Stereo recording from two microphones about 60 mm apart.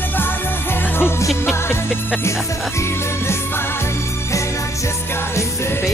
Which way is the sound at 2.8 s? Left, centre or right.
Left.